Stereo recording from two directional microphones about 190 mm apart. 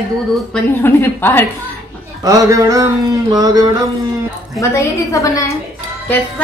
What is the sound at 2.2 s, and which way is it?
Speech, 15° right (ahead or behind).